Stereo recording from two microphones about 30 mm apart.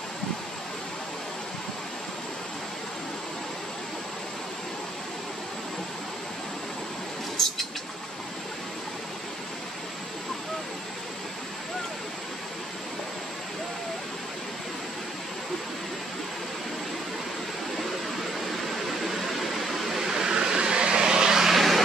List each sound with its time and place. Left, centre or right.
7.4 s vehicle: centre
19.0 s a sound: centre
20.1 s vehicle: right
21.5 s vehicle: centre